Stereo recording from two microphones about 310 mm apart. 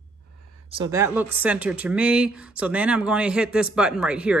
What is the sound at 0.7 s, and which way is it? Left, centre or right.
Speech, centre.